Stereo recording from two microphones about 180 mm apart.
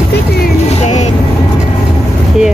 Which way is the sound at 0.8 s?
40° left (ahead or behind).